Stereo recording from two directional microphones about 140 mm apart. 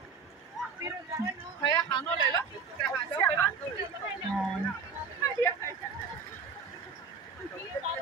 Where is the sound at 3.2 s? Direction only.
15° left (ahead or behind).